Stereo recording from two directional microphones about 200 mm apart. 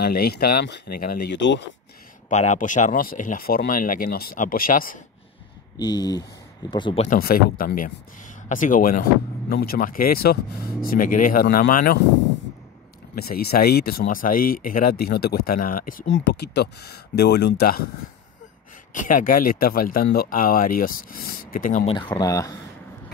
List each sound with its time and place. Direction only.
0.0 s speech: 50° left (ahead or behind)
2.2 s speech: 35° left (ahead or behind)
5.8 s speech: 20° left (ahead or behind)
7.1 s speech: 50° left (ahead or behind)
13.1 s speech: 50° left (ahead or behind)
16.1 s speech: 60° left (ahead or behind)
18.9 s speech: 40° left (ahead or behind)
21.8 s speech: 20° left (ahead or behind)